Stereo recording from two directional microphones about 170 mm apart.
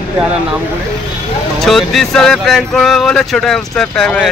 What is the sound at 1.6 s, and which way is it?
Speech, centre (ahead or behind).